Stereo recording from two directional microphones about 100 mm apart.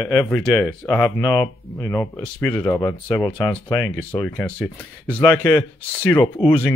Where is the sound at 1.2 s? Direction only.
45° left (ahead or behind).